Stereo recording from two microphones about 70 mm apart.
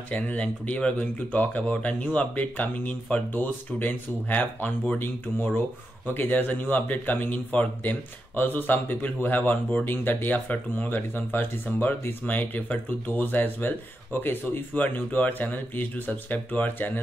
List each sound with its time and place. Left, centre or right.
0.1 s speech: centre